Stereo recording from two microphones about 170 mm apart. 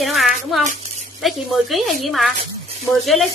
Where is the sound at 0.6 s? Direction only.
45° right (ahead or behind).